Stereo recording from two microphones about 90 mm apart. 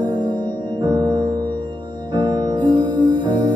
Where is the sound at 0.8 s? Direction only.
50° right (ahead or behind).